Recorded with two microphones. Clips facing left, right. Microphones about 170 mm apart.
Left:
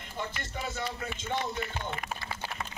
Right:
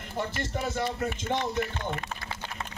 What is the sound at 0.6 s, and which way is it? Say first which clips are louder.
Speech: right 6 dB; 45° right (ahead or behind).